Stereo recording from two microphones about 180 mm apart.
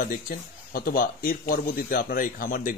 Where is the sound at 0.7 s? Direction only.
50° left (ahead or behind).